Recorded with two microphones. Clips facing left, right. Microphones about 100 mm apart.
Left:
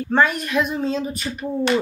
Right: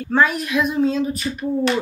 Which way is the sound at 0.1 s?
Centre (ahead or behind).